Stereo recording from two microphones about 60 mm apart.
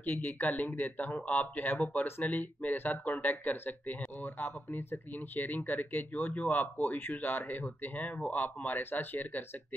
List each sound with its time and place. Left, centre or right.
0.0 s speech: left